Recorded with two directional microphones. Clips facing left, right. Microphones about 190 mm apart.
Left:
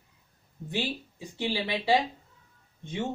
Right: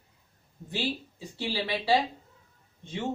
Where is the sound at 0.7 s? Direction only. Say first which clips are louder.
Even; 20° left (ahead or behind).